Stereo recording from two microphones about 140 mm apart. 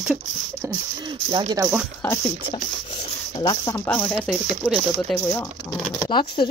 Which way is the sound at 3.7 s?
10° left (ahead or behind).